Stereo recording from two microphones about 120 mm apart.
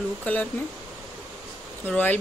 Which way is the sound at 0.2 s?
15° left (ahead or behind).